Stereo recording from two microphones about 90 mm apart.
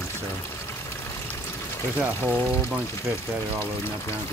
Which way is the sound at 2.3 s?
15° right (ahead or behind).